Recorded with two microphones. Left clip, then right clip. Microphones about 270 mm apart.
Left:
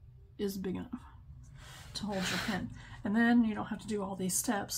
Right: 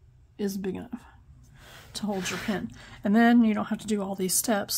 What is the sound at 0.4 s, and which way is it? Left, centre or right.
Speech, right.